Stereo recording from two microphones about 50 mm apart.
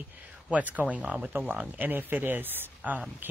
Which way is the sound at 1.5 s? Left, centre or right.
Right.